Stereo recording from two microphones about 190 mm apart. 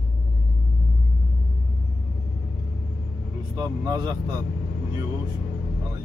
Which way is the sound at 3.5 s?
20° right (ahead or behind).